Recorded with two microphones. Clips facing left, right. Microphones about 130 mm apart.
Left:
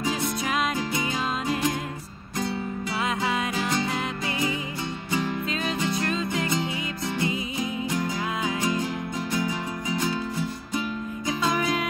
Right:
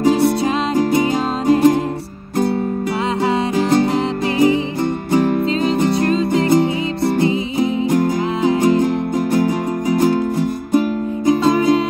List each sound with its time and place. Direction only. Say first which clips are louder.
0.7 s music: right 12 dB; 45° right (ahead or behind)
2.3 s music: right 11 dB; 50° right (ahead or behind)
3.9 s music: right 11 dB; 40° right (ahead or behind)
5.1 s music: right 12 dB; 50° right (ahead or behind)
6.0 s music: right 11 dB; 35° right (ahead or behind)
6.4 s music: right 13 dB; 55° right (ahead or behind)
8.5 s music: right 12 dB; 50° right (ahead or behind)